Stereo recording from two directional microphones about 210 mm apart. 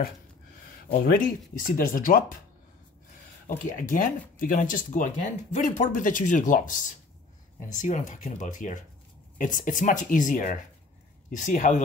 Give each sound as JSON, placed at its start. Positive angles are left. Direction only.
{"t": 0.7, "sound": "speech", "side_deg": 45}
{"t": 3.4, "sound": "speech", "side_deg": 40}